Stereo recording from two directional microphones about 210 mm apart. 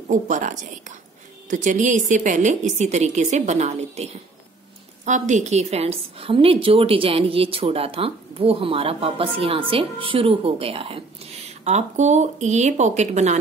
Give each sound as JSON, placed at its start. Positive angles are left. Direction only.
{"t": 0.1, "sound": "a woman's voice", "side_deg": -35}